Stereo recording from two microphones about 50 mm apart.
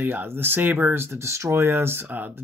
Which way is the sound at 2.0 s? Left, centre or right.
Right.